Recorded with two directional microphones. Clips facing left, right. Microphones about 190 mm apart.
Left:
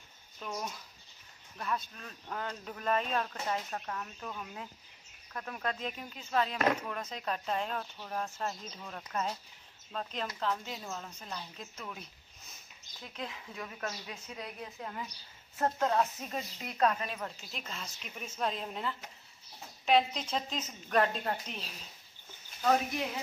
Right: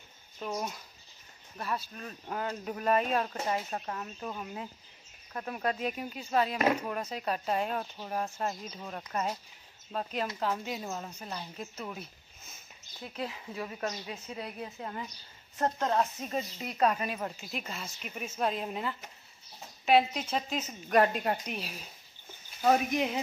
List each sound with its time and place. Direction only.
1.6 s speech: 5° right (ahead or behind)
10.4 s speech: 10° right (ahead or behind)
13.0 s speech: 5° right (ahead or behind)
13.7 s speech: 15° right (ahead or behind)
14.0 s speech: 5° right (ahead or behind); by 23.2 s 20° right (ahead or behind)